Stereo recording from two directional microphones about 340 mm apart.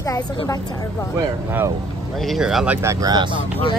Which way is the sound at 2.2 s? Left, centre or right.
Centre.